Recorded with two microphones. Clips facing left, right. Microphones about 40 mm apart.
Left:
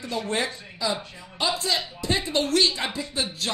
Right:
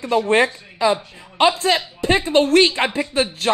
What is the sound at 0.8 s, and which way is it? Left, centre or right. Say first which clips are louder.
Speech: right 10 dB; right.